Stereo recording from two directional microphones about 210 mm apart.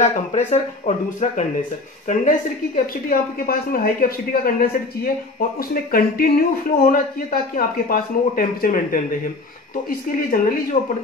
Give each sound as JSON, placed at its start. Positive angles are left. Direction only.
{"t": 0.0, "sound": "speech", "side_deg": 35}